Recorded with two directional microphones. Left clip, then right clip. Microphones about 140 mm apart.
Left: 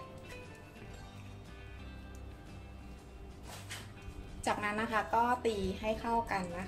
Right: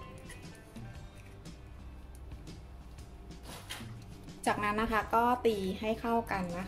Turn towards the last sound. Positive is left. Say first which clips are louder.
# right 1 dB
turn(degrees=-25)  # may be behind; listen again after turning